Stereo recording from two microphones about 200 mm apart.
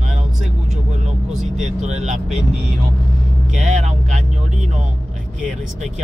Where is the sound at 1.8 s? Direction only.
35° right (ahead or behind).